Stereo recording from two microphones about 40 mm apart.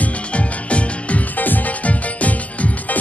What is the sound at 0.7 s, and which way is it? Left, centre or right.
Music, left.